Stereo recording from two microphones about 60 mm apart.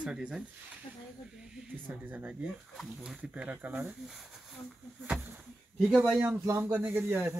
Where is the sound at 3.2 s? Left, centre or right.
Right.